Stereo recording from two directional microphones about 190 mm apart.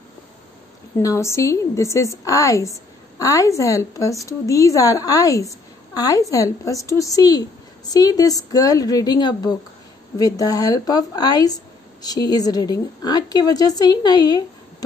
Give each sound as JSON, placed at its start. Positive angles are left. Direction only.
{"t": 0.9, "sound": "a woman's voice", "side_deg": 15}